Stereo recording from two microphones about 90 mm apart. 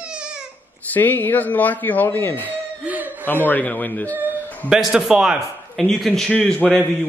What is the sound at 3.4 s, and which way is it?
Speech, 20° left (ahead or behind).